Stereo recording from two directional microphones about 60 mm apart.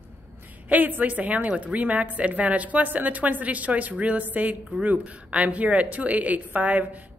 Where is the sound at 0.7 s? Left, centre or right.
Right.